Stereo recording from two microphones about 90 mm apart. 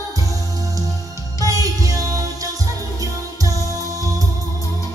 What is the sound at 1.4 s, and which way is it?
Music, 40° right (ahead or behind).